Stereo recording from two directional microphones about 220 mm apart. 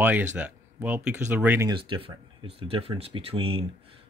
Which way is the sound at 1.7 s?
25° right (ahead or behind).